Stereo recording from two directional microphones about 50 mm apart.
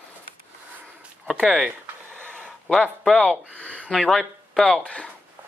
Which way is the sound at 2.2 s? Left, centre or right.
Left.